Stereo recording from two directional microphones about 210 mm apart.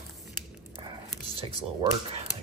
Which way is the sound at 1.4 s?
25° right (ahead or behind).